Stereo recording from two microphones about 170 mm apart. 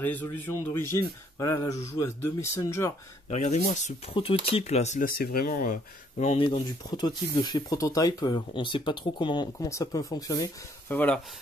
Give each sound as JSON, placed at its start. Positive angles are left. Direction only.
{"t": 0.0, "sound": "speech", "side_deg": 10}
{"t": 3.3, "sound": "speech", "side_deg": 45}
{"t": 4.1, "sound": "speech", "side_deg": 35}
{"t": 5.1, "sound": "speech", "side_deg": 60}
{"t": 10.9, "sound": "speech", "side_deg": 10}